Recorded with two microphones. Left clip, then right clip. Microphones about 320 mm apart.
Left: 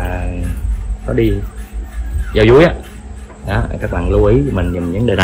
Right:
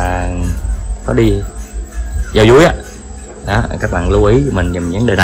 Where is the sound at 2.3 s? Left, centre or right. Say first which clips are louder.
Right 1 dB; centre.